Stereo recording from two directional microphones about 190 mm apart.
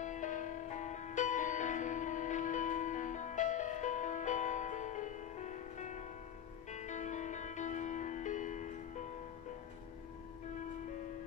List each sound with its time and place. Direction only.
0.0 s music: 40° left (ahead or behind)